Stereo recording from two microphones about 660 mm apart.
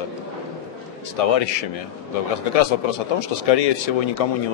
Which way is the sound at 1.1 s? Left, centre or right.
Left.